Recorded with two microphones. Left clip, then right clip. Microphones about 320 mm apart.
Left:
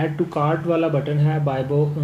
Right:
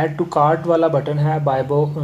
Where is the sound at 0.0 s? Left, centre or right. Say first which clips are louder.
Right 6 dB; right.